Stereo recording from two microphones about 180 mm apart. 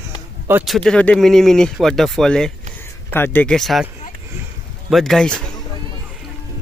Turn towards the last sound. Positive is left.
turn(degrees=5)  # may be behind; listen again after turning